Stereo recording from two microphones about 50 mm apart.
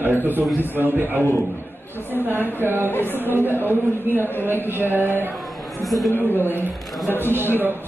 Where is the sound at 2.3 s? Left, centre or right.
Right.